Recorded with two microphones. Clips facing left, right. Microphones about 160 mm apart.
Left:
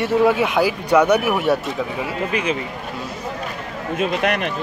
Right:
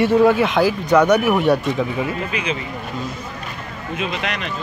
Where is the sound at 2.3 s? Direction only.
45° left (ahead or behind).